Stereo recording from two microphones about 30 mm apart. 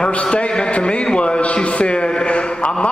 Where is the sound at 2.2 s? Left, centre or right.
Left.